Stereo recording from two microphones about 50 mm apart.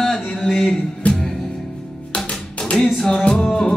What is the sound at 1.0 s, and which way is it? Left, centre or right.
Music, left.